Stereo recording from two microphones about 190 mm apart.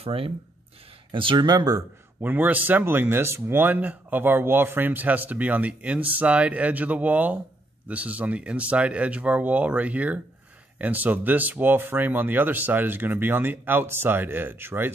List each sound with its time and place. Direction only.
0.0 s speech: 30° right (ahead or behind); by 14.9 s 10° right (ahead or behind)